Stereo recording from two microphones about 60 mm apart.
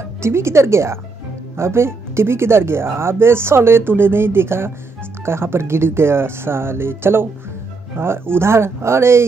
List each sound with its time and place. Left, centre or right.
0.2 s speech: right